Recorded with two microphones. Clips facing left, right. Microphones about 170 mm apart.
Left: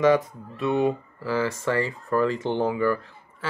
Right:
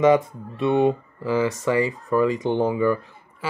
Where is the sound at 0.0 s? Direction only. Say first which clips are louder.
Right 3 dB; 25° right (ahead or behind).